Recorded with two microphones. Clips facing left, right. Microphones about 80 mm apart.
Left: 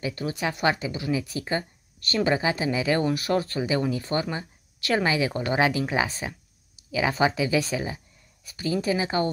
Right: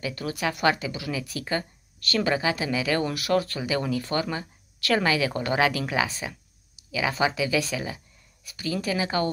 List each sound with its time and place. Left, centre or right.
0.0 s speech: left